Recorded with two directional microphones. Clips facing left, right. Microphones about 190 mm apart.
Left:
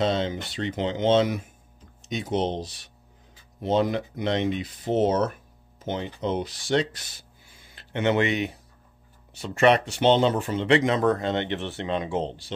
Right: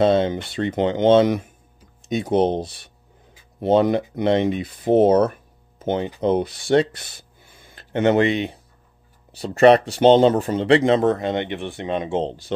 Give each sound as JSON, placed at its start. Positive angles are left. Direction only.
{"t": 0.0, "sound": "speech", "side_deg": -55}
{"t": 5.8, "sound": "a sound", "side_deg": -55}
{"t": 6.2, "sound": "speech", "side_deg": -55}
{"t": 12.3, "sound": "speech", "side_deg": -45}